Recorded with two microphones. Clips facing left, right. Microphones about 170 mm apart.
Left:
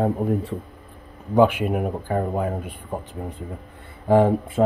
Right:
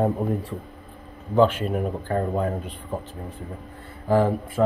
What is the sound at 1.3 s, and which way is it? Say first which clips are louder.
Speech: left 2 dB; 10° left (ahead or behind).